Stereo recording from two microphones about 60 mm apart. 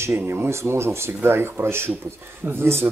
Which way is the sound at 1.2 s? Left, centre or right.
Right.